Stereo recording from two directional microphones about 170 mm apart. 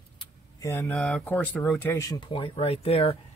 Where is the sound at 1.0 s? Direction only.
5° left (ahead or behind).